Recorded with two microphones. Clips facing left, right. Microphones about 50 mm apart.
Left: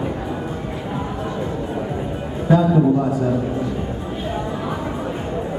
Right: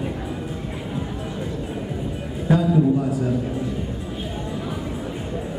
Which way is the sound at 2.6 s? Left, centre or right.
Left.